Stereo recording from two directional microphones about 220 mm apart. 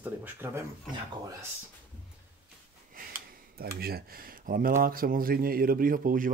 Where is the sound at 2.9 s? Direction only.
40° right (ahead or behind).